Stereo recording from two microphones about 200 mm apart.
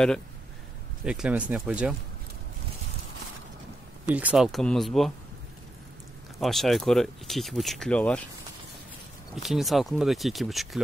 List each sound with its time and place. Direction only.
1.0 s speech: 5° right (ahead or behind)
4.1 s speech: 5° right (ahead or behind)
6.4 s speech: centre (ahead or behind)
9.3 s speech: centre (ahead or behind)